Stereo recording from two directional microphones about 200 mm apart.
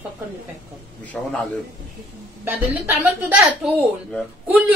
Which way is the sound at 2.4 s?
10° right (ahead or behind).